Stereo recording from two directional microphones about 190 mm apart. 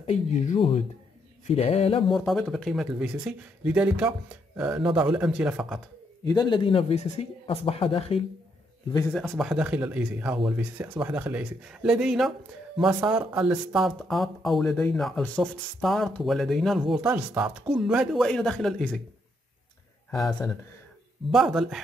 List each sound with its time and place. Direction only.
0.0 s speech: 35° left (ahead or behind)
2.1 s speech: centre (ahead or behind)
6.2 s speech: 25° left (ahead or behind)
9.0 s speech: 5° left (ahead or behind)
20.1 s a man's voice: centre (ahead or behind)